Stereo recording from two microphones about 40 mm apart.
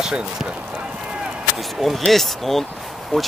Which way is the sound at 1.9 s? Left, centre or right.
Centre.